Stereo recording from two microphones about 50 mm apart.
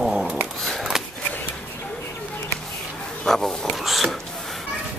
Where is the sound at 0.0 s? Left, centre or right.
Centre.